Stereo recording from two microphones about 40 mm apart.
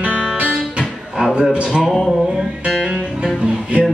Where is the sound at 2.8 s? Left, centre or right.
Right.